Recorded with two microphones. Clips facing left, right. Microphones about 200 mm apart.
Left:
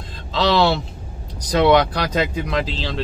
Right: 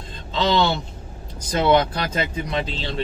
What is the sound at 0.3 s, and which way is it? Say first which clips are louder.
Speech: left 2 dB; 80° left.